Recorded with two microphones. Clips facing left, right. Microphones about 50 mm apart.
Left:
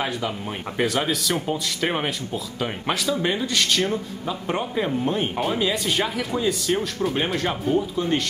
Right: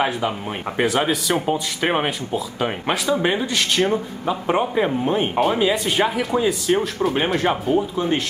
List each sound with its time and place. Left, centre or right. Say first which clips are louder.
0.7 s speech: right 3 dB; centre
2.0 s speech: right 4 dB; centre